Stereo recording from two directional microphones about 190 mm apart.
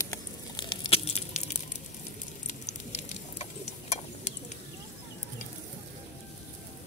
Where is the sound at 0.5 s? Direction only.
25° left (ahead or behind).